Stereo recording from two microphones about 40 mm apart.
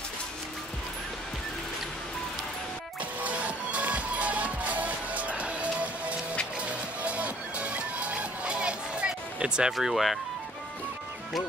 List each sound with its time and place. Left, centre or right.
3.2 s music: right
9.8 s speech: centre